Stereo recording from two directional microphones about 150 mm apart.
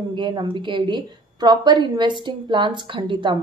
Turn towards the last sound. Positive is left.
turn(degrees=-30)  # may be behind; listen again after turning